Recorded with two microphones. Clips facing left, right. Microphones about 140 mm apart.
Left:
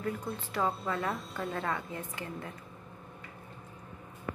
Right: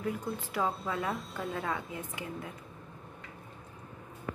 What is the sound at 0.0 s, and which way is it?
Speech, 15° right (ahead or behind).